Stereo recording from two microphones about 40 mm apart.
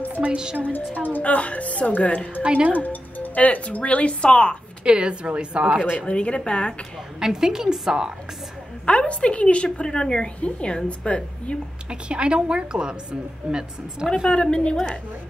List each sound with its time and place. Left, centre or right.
0.1 s music: right
0.9 s speech: left
2.4 s a woman's voice: right
2.7 s speech: left
4.8 s a woman's voice: right
6.0 s a woman's voice: left
7.2 s a woman's voice: centre
8.8 s a woman's voice: left
11.9 s a woman's voice: right
14.1 s a woman's voice: left